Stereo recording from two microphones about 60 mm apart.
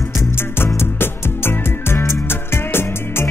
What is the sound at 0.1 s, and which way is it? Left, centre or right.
Music, left.